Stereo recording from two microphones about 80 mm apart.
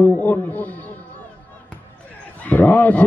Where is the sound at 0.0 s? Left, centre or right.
Left.